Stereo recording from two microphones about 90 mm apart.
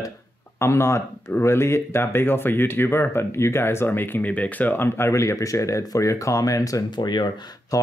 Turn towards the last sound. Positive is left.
turn(degrees=50)  # may be behind; listen again after turning